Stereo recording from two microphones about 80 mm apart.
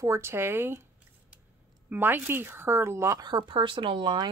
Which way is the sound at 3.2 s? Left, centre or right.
Right.